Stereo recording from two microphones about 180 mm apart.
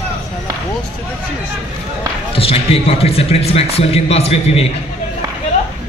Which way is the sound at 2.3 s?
30° left (ahead or behind).